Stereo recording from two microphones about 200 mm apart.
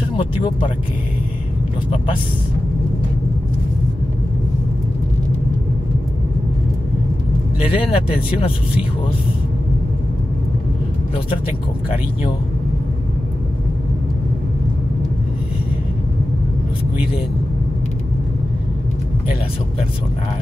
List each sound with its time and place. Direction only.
7.6 s speech: 25° left (ahead or behind)